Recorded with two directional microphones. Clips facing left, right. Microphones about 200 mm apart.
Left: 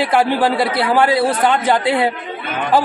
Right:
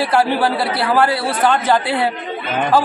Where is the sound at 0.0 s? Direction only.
15° left (ahead or behind).